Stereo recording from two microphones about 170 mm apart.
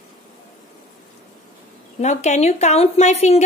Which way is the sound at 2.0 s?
40° left (ahead or behind).